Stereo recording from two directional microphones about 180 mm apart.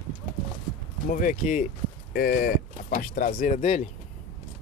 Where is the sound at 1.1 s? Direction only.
50° left (ahead or behind).